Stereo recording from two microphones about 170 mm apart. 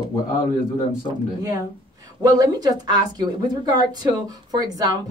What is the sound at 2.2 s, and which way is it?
Speech, 25° right (ahead or behind).